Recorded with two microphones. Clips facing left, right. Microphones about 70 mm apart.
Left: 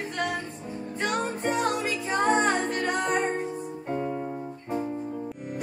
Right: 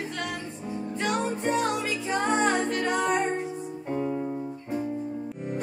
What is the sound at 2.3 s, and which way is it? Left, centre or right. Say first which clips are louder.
Music: left 1 dB; left.